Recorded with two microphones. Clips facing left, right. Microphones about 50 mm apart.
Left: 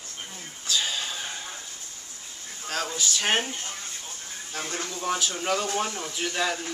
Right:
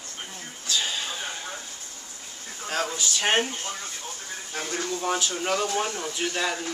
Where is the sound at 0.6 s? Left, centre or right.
Centre.